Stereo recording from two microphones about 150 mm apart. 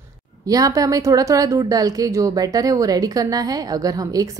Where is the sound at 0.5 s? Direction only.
25° right (ahead or behind).